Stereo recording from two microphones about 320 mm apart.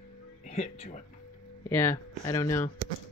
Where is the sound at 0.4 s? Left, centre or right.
Left.